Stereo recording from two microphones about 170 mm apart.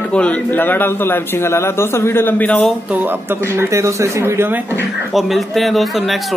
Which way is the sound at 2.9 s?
10° right (ahead or behind).